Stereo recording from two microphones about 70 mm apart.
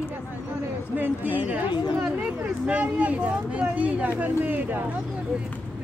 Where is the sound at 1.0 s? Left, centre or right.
Right.